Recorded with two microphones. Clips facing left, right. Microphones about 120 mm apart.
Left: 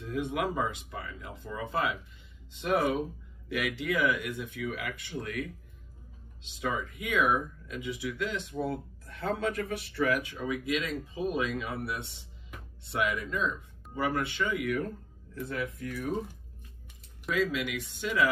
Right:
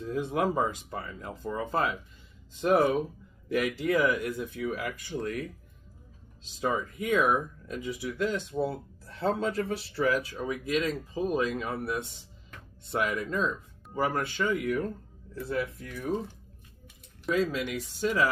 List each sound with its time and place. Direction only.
0.0 s speech: 35° right (ahead or behind)
17.3 s speech: 40° right (ahead or behind)